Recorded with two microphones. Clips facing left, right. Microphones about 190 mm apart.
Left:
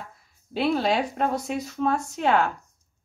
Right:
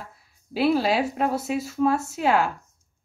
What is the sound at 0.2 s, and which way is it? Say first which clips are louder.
Speech: right 3 dB; 5° right (ahead or behind).